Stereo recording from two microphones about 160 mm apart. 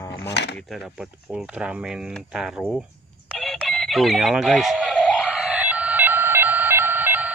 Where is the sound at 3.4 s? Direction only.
Centre (ahead or behind).